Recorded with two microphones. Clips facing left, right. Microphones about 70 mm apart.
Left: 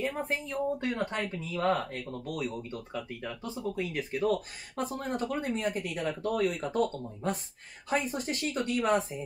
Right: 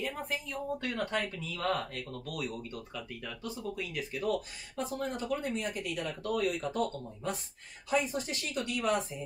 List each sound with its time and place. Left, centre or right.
0.0 s speech: left
5.3 s speech: left